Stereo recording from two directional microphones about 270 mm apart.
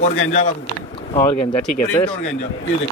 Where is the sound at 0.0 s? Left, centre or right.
Left.